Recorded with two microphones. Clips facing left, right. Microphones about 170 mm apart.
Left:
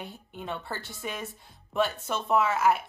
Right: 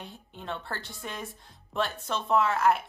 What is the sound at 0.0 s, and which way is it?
Speech, 5° left (ahead or behind).